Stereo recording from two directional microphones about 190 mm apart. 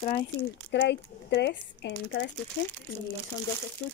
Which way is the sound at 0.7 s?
60° left (ahead or behind).